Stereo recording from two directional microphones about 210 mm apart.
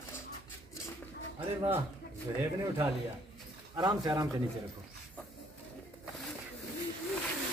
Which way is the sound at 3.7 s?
20° right (ahead or behind).